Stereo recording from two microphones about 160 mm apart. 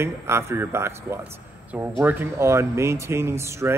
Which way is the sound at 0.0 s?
15° right (ahead or behind).